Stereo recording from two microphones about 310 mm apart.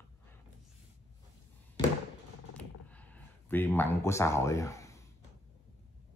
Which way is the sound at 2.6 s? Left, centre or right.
Centre.